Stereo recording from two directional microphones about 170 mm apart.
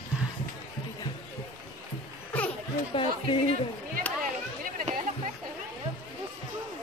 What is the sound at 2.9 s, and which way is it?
Chatter, 30° left (ahead or behind).